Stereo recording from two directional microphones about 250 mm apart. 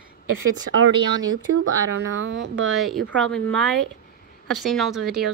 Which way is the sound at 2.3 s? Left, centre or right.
Right.